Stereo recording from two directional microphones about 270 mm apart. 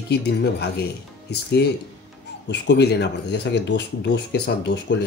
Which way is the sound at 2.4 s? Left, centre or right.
Left.